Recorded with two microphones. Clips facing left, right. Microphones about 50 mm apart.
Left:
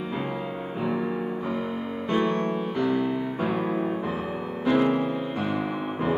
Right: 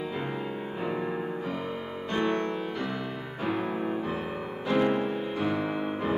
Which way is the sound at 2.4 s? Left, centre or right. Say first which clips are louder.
Left 5 dB; centre.